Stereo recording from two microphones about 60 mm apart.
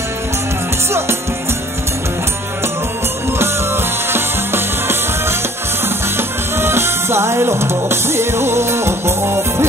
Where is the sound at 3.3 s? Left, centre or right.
Right.